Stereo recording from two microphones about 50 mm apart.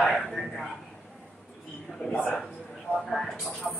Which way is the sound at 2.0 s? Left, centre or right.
Centre.